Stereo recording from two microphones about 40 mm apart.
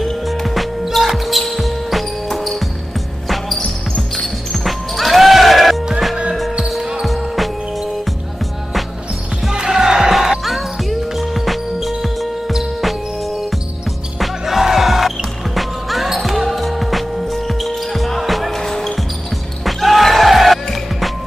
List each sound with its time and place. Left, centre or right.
0.3 s music: centre
3.3 s basketball bounce: centre
4.5 s music: centre
6.8 s basketball bounce: centre
9.5 s basketball bounce: centre
14.2 s music: centre
18.6 s basketball bounce: centre
19.6 s music: centre